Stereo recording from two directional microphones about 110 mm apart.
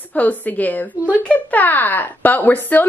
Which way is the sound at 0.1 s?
15° left (ahead or behind).